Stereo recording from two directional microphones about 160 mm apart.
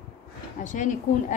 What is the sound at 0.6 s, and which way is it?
Speech, 50° left (ahead or behind).